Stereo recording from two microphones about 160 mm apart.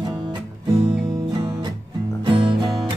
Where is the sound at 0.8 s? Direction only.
30° right (ahead or behind).